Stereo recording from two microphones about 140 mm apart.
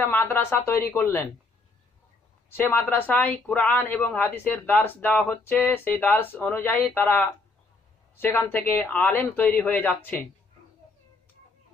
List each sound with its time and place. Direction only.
0.0 s speech: 15° left (ahead or behind)
2.5 s speech: 15° left (ahead or behind)